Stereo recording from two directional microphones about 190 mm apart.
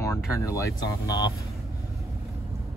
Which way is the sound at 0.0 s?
15° left (ahead or behind).